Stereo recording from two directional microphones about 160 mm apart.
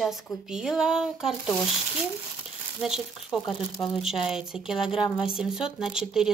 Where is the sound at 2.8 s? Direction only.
5° right (ahead or behind).